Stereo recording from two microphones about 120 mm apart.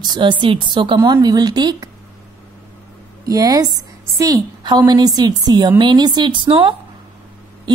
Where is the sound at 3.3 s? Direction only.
30° right (ahead or behind).